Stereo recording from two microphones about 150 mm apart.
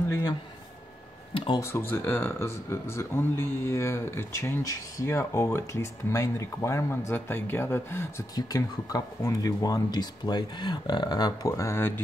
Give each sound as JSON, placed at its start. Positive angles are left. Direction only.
{"t": 0.1, "sound": "speech", "side_deg": 25}
{"t": 1.6, "sound": "speech", "side_deg": 15}